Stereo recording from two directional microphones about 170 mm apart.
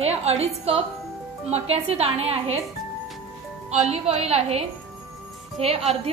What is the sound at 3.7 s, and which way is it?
A woman's voice, 40° right (ahead or behind).